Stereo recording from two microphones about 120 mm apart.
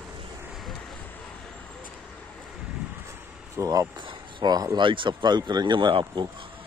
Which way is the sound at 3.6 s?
25° right (ahead or behind).